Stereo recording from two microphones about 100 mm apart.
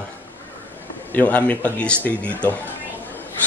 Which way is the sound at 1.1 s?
15° left (ahead or behind).